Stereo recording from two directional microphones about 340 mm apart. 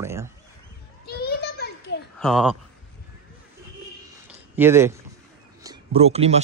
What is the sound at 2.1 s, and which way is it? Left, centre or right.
Speech, centre.